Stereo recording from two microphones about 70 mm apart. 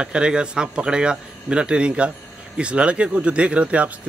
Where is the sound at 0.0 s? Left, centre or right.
Centre.